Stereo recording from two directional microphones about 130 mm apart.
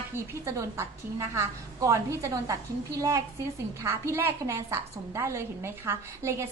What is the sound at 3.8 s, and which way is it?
A woman's voice, 20° right (ahead or behind).